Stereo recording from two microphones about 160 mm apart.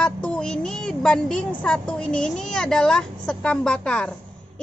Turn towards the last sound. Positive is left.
turn(degrees=5)  # may be behind; listen again after turning